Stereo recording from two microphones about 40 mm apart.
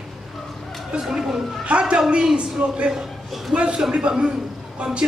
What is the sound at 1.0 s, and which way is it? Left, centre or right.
Speech, centre.